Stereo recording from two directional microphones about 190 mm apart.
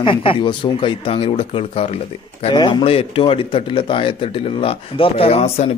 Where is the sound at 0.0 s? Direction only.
25° left (ahead or behind).